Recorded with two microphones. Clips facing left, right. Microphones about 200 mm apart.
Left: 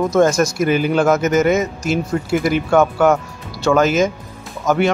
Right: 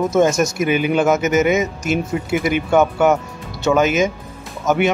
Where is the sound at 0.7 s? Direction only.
40° left (ahead or behind).